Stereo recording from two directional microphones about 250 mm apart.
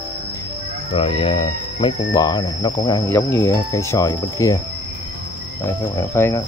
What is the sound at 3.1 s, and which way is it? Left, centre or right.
Speech, centre.